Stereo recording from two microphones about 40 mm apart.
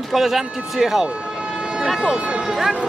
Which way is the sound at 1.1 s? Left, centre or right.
Right.